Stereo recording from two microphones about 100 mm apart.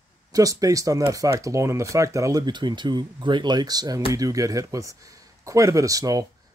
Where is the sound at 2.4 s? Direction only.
50° right (ahead or behind).